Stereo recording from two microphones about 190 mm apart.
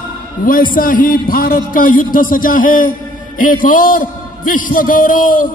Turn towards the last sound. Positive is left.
turn(degrees=45)  # may be behind; listen again after turning